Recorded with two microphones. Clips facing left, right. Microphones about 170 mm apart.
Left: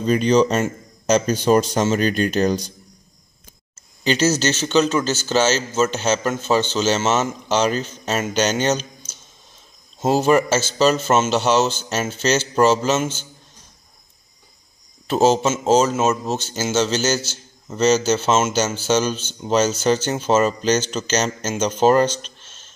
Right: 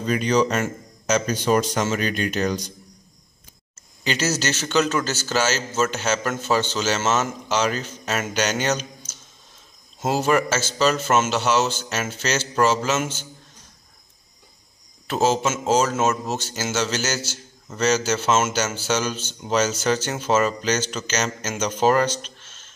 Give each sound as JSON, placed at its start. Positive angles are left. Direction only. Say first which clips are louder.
{"t": 0.0, "sound": "speech", "louder": "left 4 dB", "side_deg": 25}
{"t": 4.0, "sound": "a man's voice", "louder": "left 6 dB", "side_deg": 30}
{"t": 10.0, "sound": "a man's voice", "louder": "left 4 dB", "side_deg": 25}
{"t": 15.0, "sound": "a man's voice", "louder": "left 4 dB", "side_deg": 30}
{"t": 22.2, "sound": "a sound", "louder": "right 1 dB", "side_deg": 30}